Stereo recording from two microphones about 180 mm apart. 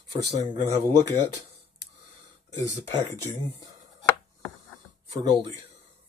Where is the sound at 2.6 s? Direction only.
15° left (ahead or behind).